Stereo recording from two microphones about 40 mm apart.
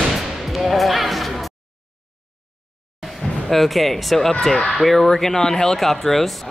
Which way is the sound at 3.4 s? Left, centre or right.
Centre.